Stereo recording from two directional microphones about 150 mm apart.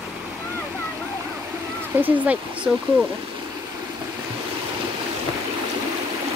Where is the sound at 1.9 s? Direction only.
10° right (ahead or behind).